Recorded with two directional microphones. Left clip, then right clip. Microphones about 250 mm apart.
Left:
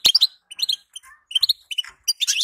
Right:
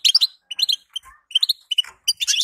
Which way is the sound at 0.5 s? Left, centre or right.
Centre.